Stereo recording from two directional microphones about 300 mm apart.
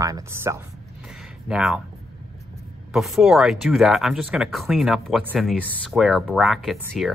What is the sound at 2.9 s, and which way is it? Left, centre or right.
Speech, centre.